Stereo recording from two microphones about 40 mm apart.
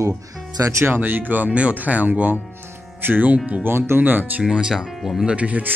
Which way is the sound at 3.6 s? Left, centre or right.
Right.